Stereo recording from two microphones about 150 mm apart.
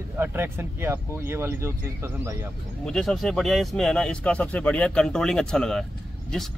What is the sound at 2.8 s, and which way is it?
A man's voice, 5° left (ahead or behind).